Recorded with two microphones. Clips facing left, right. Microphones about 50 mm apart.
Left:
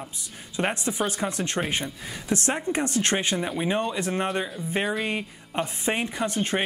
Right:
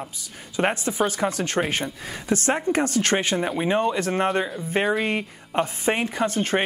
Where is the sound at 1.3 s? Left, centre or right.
Right.